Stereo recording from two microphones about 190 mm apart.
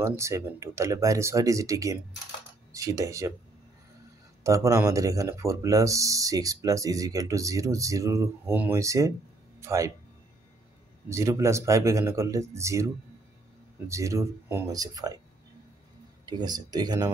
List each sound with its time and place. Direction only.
0.0 s speech: 15° right (ahead or behind)
4.4 s speech: 15° right (ahead or behind)
11.1 s speech: 15° right (ahead or behind)
16.3 s speech: 20° right (ahead or behind)